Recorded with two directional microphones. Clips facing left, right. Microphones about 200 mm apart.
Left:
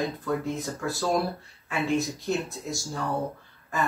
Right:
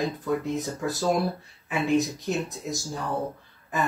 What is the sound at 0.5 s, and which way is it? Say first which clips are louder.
Speech: right 2 dB; 20° right (ahead or behind).